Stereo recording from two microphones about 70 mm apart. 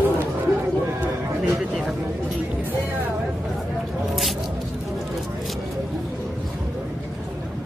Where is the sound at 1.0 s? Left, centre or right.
Right.